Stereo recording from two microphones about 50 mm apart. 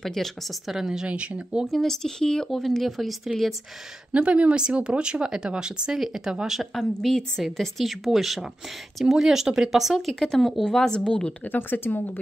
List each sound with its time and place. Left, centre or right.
0.0 s speech: centre
0.7 s speech: centre
1.0 s speech: right
1.7 s speech: centre
2.5 s speech: centre
4.1 s speech: right; by 6.7 s centre
6.7 s speech: centre
9.9 s speech: centre
11.4 s speech: left